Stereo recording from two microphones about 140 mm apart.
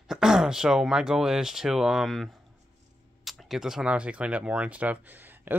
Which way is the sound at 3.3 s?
5° right (ahead or behind).